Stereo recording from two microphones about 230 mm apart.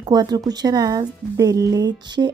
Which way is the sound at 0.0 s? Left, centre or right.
Centre.